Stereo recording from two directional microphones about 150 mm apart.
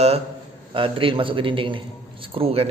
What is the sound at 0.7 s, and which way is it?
A man's voice, 35° right (ahead or behind).